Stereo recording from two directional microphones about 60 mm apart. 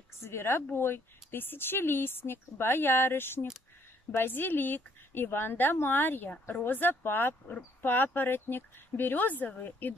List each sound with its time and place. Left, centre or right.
0.2 s speech: left